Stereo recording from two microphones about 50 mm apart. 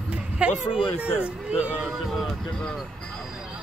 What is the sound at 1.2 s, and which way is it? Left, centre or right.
Speech, right.